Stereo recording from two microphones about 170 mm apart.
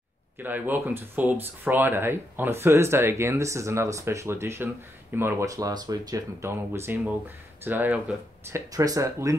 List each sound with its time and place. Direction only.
0.4 s speech: 10° right (ahead or behind)